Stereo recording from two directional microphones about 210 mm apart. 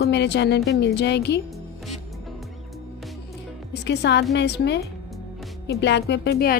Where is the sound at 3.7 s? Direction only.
55° left (ahead or behind).